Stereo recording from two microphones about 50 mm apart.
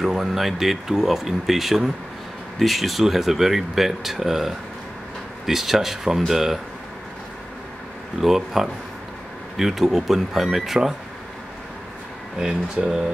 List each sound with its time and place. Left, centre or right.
0.0 s speech: centre
8.2 s speech: centre
12.4 s speech: centre